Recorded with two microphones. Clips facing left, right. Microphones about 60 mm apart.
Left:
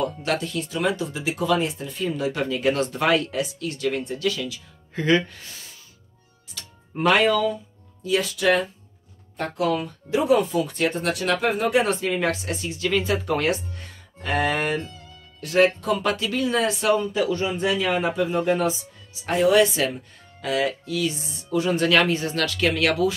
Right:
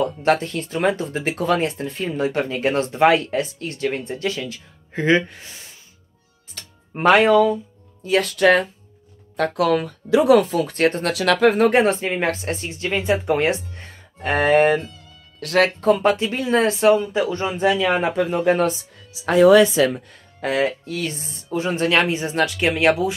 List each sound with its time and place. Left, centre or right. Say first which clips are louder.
0.0 s speech: right 6 dB; right
6.5 s music: even; right
8.0 s speech: right 5 dB; right
9.4 s a woman's voice: right 5 dB; right
10.5 s speech: right 4 dB; right
11.1 s speech: right 7 dB; right
11.8 s speech: right 3 dB; right
15.4 s speech: right 1 dB; right
15.8 s speech: right 6 dB; right
17.6 s speech: right 8 dB; right
18.1 s speech: right 3 dB; right
20.3 s speech: right 3 dB; right